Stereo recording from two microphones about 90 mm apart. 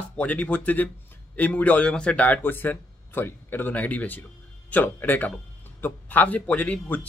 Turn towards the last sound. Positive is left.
turn(degrees=15)  # may be behind; listen again after turning